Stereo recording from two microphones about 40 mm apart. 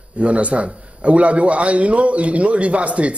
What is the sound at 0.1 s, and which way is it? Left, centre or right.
A man's voice, right.